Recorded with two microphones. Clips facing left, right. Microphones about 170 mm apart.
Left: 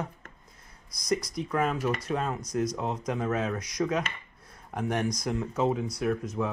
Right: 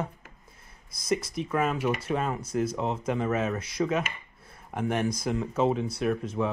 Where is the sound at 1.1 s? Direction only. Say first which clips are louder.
Right 1 dB; 25° right (ahead or behind).